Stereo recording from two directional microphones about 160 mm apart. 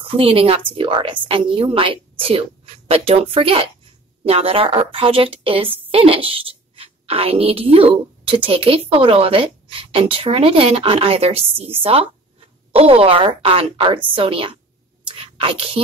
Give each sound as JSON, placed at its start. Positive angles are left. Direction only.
{"t": 0.0, "sound": "a woman's voice", "side_deg": -35}
{"t": 15.0, "sound": "whispering", "side_deg": -35}